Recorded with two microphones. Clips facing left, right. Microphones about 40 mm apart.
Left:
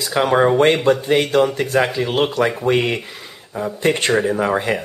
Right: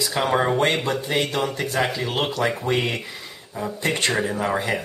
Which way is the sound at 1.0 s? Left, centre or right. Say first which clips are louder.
Left 7 dB; left.